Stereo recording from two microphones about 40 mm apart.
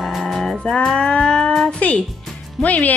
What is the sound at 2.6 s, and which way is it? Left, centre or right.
Speech, left.